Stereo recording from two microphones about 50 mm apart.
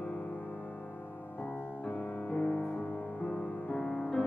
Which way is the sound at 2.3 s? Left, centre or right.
Left.